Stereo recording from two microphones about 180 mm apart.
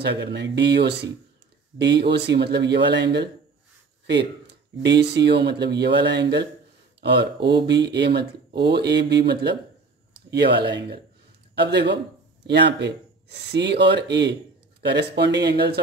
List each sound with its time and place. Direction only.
0.0 s speech: 70° right (ahead or behind)
4.8 s speech: 70° right (ahead or behind)
7.6 s speech: 70° right (ahead or behind)